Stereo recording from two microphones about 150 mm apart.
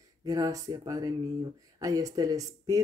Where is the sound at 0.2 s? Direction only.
25° right (ahead or behind).